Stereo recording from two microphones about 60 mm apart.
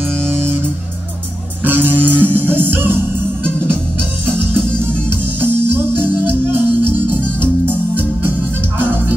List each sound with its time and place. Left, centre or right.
0.3 s music: right
1.6 s music: right
4.6 s music: centre
5.4 s music: right